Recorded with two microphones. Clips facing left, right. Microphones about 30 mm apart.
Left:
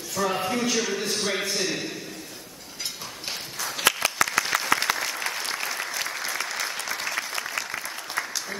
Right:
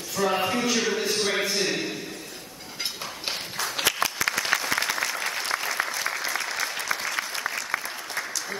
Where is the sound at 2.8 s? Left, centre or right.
Right.